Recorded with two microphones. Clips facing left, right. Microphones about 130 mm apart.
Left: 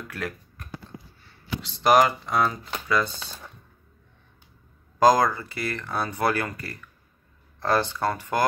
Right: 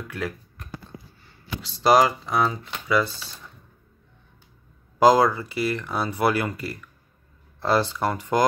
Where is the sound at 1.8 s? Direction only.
15° right (ahead or behind).